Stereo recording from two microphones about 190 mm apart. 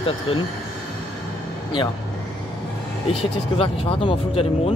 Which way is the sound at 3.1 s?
30° left (ahead or behind).